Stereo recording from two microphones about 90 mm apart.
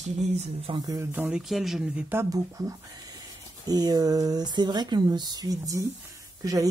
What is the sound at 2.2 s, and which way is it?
Speech, 40° right (ahead or behind).